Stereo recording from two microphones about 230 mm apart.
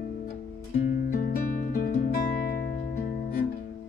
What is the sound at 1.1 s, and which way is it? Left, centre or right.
Music, left.